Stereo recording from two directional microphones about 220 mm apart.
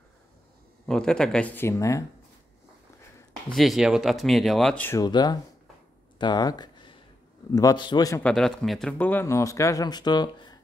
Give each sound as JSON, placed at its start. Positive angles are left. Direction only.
{"t": 0.8, "sound": "speech", "side_deg": 5}
{"t": 3.4, "sound": "speech", "side_deg": 0}
{"t": 6.1, "sound": "a sound", "side_deg": 20}
{"t": 7.5, "sound": "speech", "side_deg": 20}
{"t": 8.3, "sound": "speech", "side_deg": 0}